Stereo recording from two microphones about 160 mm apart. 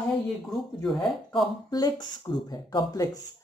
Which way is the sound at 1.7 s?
25° left (ahead or behind).